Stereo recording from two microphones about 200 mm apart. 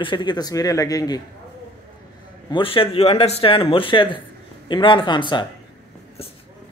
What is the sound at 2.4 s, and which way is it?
Speech, 25° left (ahead or behind).